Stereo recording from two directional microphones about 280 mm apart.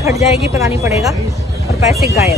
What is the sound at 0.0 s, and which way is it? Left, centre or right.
Speech, centre.